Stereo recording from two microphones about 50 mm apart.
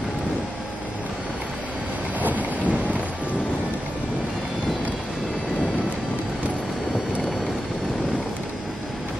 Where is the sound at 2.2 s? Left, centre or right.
Right.